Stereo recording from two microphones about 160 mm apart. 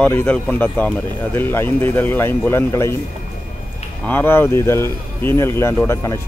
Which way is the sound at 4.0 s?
10° left (ahead or behind).